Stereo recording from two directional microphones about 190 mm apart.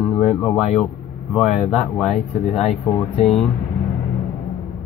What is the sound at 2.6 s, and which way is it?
Speech, centre (ahead or behind).